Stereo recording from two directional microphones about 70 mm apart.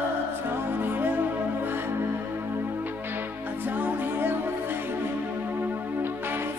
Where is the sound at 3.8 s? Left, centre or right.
Right.